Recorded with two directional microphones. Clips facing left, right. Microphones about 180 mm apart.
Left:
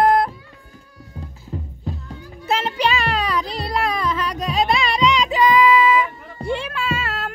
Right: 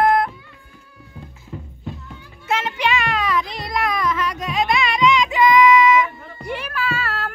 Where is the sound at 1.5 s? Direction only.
35° left (ahead or behind).